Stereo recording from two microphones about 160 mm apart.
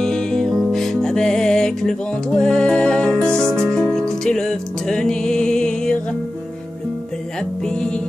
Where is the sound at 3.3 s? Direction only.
15° right (ahead or behind).